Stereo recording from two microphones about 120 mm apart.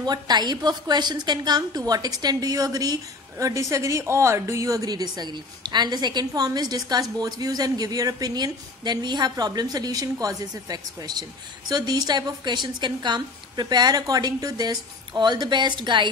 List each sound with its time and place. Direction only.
0.0 s a woman's voice: 35° right (ahead or behind)